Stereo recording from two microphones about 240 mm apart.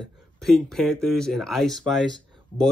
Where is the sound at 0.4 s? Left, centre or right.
Centre.